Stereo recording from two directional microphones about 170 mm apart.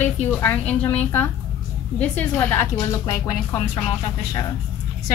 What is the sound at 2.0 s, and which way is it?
Speech, 10° left (ahead or behind).